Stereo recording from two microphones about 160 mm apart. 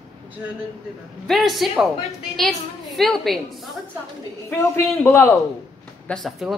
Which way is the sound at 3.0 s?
Centre (ahead or behind).